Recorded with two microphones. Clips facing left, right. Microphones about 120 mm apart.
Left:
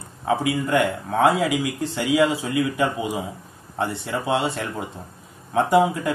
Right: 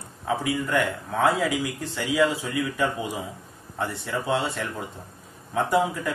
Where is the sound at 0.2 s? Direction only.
15° left (ahead or behind).